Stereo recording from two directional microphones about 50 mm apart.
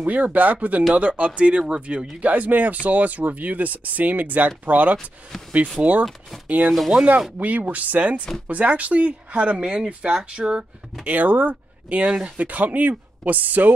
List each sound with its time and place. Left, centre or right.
0.0 s speech: right
6.7 s speech: centre
7.3 s speech: right
11.1 s speech: right
12.0 s speech: centre
12.4 s speech: right